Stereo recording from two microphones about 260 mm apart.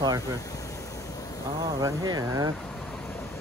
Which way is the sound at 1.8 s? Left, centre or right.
Centre.